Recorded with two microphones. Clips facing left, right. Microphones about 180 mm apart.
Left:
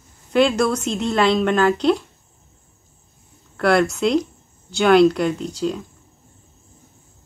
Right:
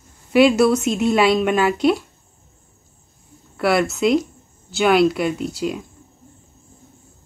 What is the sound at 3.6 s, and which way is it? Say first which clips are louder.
Speech: left 1 dB; 5° right (ahead or behind).